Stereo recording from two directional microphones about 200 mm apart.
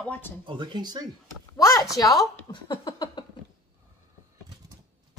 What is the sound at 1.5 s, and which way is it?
Speech, 15° left (ahead or behind).